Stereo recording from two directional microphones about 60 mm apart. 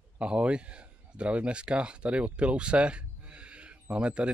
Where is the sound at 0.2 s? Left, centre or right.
Centre.